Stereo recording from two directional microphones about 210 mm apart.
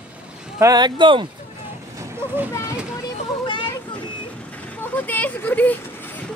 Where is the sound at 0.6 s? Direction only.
20° right (ahead or behind).